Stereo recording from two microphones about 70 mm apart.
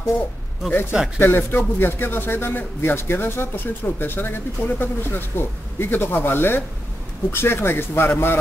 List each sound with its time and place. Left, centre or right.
0.9 s speech: centre
1.2 s a man's voice: left